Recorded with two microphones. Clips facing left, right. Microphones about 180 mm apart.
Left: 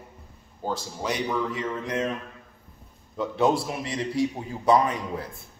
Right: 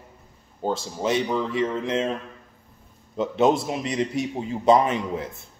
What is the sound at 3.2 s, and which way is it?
A man's voice, 20° right (ahead or behind).